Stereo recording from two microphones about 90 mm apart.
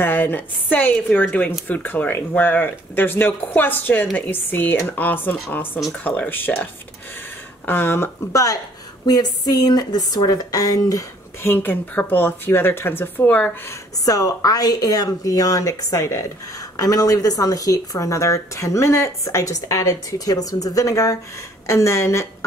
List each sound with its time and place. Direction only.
0.0 s speech: 20° left (ahead or behind)
8.3 s a woman's voice: 40° left (ahead or behind)
11.4 s speech: 20° left (ahead or behind)
13.7 s speech: 40° left (ahead or behind)